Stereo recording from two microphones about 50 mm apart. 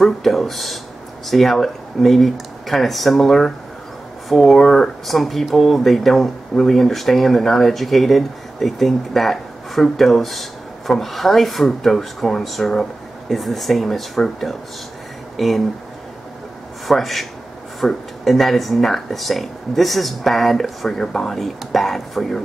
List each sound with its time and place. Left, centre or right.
0.0 s speech: centre
16.8 s speech: centre